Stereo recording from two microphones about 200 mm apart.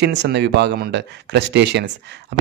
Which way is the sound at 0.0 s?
60° right (ahead or behind).